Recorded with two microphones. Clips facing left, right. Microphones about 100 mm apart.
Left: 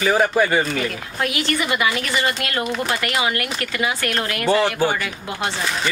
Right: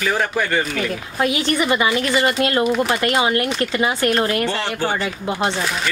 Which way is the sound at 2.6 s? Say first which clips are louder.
Right 4 dB; 5° right (ahead or behind).